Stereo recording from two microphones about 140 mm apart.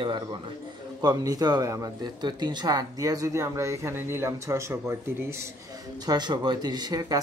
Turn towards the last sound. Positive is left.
turn(degrees=-30)  # may be behind; listen again after turning